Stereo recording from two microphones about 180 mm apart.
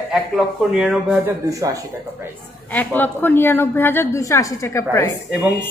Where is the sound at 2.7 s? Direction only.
10° left (ahead or behind).